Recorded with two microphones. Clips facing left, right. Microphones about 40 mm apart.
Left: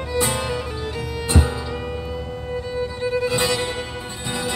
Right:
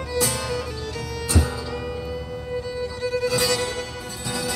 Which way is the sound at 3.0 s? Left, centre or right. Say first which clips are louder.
Left 1 dB; left.